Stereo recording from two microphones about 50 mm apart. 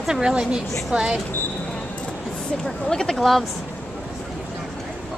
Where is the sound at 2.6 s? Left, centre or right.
Centre.